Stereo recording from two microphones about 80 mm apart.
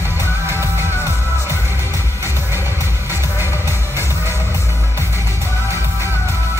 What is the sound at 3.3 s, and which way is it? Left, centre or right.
Music, right.